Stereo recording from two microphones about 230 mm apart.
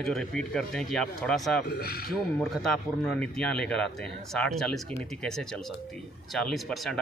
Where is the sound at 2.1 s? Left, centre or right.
Centre.